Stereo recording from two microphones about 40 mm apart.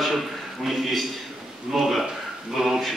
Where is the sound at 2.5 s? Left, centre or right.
Centre.